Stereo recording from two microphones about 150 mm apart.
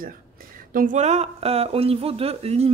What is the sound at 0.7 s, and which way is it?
A woman's voice, 55° right (ahead or behind).